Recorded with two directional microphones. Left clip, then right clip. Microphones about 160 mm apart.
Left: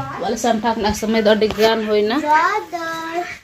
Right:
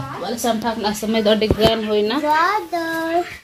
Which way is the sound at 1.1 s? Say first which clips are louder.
Left 1 dB; 15° left (ahead or behind).